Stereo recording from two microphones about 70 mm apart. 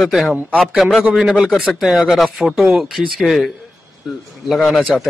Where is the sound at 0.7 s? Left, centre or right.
Centre.